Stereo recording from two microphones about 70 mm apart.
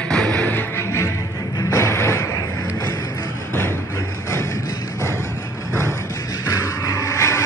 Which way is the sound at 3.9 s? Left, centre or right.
Left.